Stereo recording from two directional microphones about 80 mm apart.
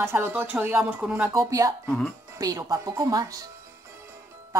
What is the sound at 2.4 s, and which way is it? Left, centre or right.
Speech, right.